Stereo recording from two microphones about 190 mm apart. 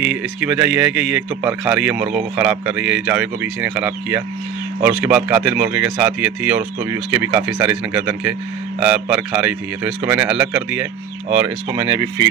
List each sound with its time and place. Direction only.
0.0 s speech: 5° right (ahead or behind)